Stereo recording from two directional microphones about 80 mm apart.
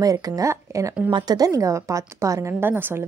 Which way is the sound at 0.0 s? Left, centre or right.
Right.